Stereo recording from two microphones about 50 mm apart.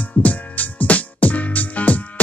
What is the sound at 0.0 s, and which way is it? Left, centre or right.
Music, left.